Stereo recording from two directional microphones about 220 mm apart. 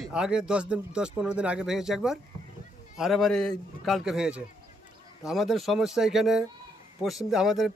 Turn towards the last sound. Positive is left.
turn(degrees=0)  # may be behind; listen again after turning